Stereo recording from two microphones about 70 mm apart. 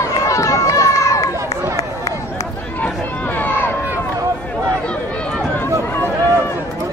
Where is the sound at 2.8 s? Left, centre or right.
Left.